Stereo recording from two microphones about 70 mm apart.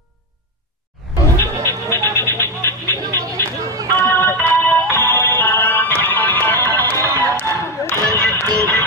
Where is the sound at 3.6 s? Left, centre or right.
Right.